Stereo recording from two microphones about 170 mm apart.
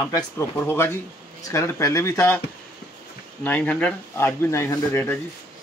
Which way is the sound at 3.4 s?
10° left (ahead or behind).